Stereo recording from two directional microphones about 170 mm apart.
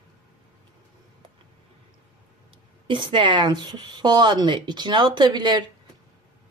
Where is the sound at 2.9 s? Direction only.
30° right (ahead or behind).